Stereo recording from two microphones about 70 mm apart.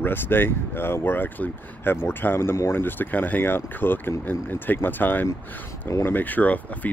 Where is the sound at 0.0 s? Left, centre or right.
Left.